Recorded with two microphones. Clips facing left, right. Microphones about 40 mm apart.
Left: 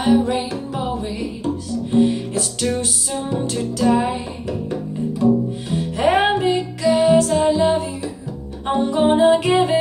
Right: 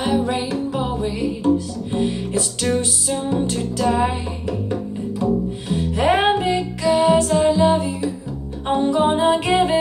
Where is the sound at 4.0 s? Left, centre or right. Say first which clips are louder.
Right 1 dB; centre.